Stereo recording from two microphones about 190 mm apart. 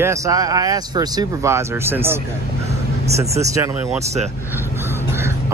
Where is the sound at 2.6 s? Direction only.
35° right (ahead or behind).